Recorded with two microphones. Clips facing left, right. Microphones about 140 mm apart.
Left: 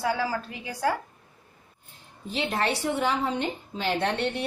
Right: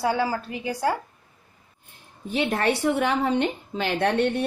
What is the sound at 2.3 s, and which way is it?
A woman's voice, 60° right (ahead or behind).